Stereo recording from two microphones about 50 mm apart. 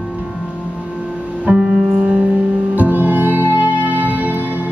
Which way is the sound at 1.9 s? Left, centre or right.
Right.